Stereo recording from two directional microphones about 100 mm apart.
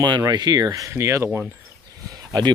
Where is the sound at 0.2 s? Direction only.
40° right (ahead or behind).